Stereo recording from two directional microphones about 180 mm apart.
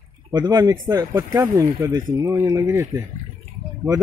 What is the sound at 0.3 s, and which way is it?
A man's voice, 25° right (ahead or behind).